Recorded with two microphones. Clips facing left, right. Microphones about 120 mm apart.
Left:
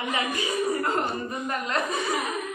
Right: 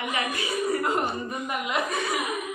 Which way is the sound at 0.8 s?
15° right (ahead or behind).